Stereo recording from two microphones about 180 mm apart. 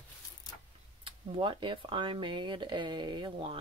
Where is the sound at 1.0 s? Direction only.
30° right (ahead or behind).